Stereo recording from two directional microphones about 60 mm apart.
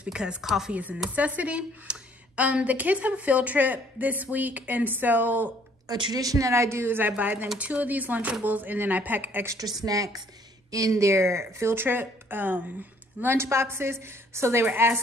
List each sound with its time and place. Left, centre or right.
0.0 s a woman's voice: centre
0.7 s a woman's voice: right
5.9 s a woman's voice: right
9.8 s speech: right
10.7 s speech: right
13.2 s speech: right
14.7 s a woman's voice: right